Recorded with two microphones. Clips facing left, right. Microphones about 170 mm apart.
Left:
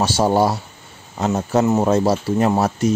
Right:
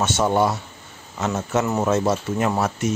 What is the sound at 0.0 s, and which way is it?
Speech, 35° left (ahead or behind).